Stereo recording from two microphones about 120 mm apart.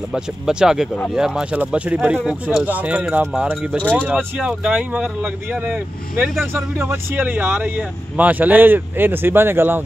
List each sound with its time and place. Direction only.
0.1 s speech: 5° right (ahead or behind)